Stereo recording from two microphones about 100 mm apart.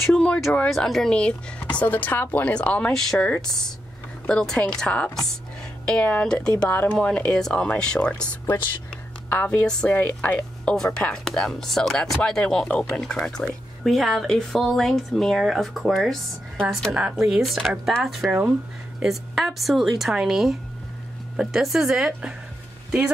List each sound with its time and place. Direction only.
0.0 s speech: 5° left (ahead or behind)
9.7 s speech: 5° left (ahead or behind)